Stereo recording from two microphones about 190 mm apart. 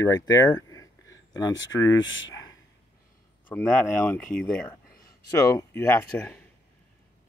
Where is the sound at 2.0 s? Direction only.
80° left.